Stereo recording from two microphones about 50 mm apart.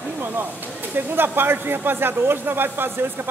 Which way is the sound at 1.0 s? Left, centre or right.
Right.